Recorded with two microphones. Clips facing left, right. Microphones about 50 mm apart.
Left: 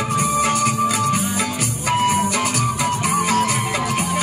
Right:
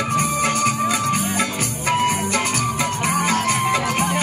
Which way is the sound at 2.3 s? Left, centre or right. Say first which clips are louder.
Left 1 dB; right.